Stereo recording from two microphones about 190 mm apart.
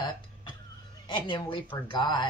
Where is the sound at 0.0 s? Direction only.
25° left (ahead or behind).